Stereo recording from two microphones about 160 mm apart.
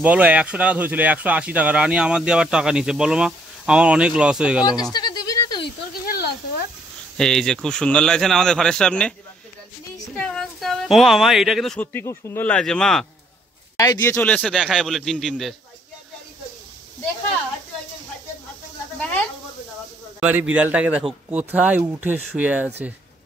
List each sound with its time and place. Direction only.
0.0 s speech: 10° right (ahead or behind)
4.9 s a sound: 25° left (ahead or behind)
6.0 s a sound: 75° left (ahead or behind)
7.2 s speech: 5° left (ahead or behind)
10.1 s speech: 5° left (ahead or behind)
13.7 s speech: 20° left (ahead or behind); by 15.5 s centre (ahead or behind)
20.2 s speech: 10° right (ahead or behind)